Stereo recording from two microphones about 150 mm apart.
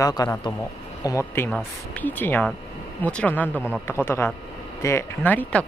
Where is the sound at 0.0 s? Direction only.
25° left (ahead or behind).